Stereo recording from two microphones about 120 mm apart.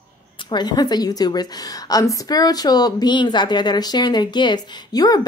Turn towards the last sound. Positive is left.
turn(degrees=35)  # may be behind; listen again after turning